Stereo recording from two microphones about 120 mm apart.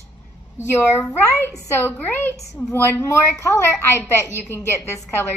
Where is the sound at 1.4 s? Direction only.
20° left (ahead or behind).